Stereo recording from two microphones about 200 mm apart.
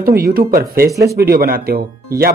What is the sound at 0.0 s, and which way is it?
Speech, 50° right (ahead or behind).